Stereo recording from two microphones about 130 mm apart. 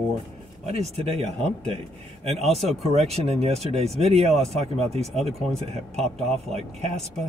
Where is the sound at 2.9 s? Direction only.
50° right (ahead or behind).